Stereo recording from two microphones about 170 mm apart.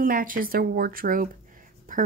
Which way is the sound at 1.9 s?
50° right (ahead or behind).